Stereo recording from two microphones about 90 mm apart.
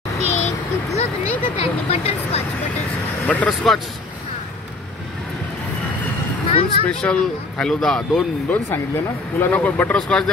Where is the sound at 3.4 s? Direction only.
5° left (ahead or behind).